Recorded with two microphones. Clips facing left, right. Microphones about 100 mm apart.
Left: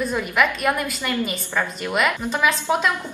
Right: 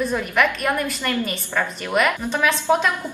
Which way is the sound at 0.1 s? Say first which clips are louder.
Right 1 dB; 5° left (ahead or behind).